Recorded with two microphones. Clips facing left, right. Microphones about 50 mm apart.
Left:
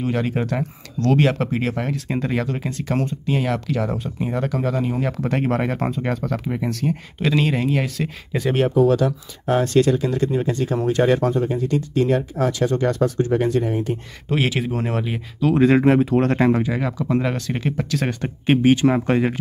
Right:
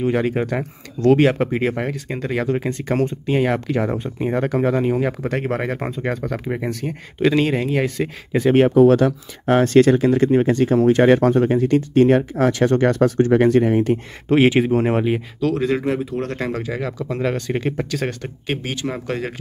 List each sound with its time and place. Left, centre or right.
0.0 s speech: centre
2.4 s speech: centre
5.3 s speech: centre
8.3 s speech: right
8.5 s speech: right
11.1 s speech: right
14.3 s speech: right
15.5 s speech: left
16.3 s speech: left
16.6 s speech: centre
18.2 s speech: left